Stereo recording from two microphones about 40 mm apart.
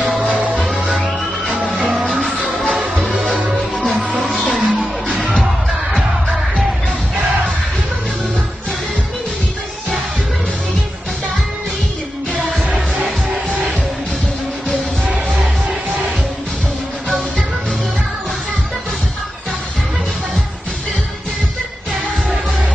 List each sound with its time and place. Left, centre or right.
0.3 s music: right
2.0 s music: centre
4.5 s music: centre